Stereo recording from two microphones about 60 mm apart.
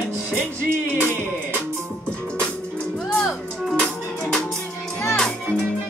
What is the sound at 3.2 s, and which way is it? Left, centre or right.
Music, centre.